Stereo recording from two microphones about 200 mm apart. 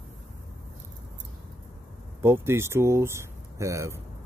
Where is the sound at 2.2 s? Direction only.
10° right (ahead or behind).